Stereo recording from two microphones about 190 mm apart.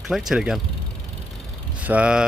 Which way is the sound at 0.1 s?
Centre (ahead or behind).